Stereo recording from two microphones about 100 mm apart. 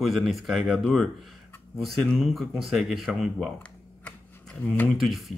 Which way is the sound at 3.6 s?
15° left (ahead or behind).